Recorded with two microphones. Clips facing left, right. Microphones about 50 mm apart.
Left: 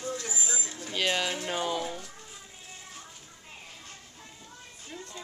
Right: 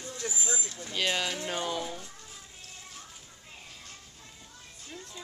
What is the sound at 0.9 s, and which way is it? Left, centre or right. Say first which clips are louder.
Speech: left 2 dB; centre.